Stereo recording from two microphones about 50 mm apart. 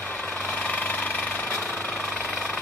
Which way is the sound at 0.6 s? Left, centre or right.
Left.